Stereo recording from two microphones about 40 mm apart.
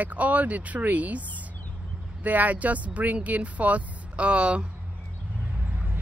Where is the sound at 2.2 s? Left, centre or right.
Right.